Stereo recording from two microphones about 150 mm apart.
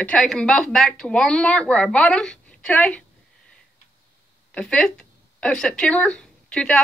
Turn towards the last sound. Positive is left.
turn(degrees=5)  # may be behind; listen again after turning